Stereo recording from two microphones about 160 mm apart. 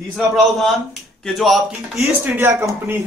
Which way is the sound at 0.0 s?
Centre (ahead or behind).